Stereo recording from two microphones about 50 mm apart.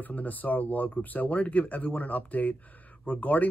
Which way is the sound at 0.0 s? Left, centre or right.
Left.